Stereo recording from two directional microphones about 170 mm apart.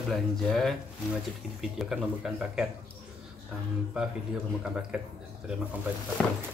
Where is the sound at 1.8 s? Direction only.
Centre (ahead or behind).